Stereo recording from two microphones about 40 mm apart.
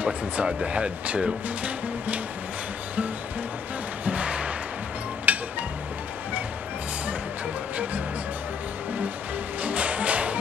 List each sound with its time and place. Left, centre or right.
0.0 s speech: right
4.0 s music: right
7.7 s music: right
9.6 s music: right